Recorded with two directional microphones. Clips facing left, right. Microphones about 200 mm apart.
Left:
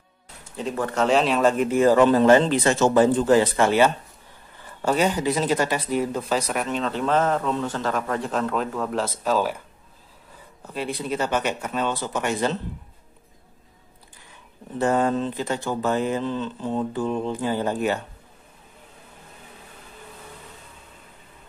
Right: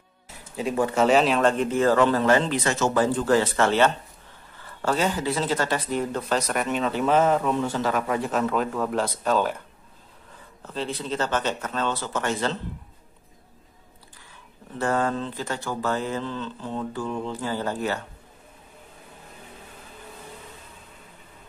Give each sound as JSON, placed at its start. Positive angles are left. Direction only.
{"t": 0.6, "sound": "a man's voice", "side_deg": -10}
{"t": 10.6, "sound": "speech", "side_deg": 10}
{"t": 14.8, "sound": "speech", "side_deg": 20}